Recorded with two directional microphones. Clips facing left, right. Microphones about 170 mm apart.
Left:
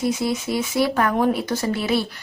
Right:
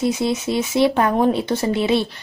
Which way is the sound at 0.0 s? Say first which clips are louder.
Right 2 dB; 20° right (ahead or behind).